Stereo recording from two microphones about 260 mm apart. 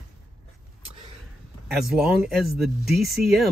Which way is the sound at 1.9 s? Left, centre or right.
Centre.